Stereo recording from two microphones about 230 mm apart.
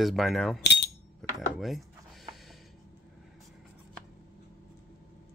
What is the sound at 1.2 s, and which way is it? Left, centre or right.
Dishes, centre.